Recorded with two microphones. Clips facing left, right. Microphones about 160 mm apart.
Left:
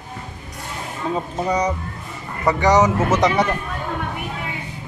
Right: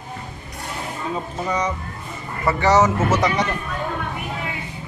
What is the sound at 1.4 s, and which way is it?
Speech, 35° left (ahead or behind).